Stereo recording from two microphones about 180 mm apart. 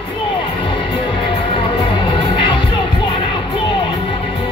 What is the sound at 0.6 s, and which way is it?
Music, 30° left (ahead or behind).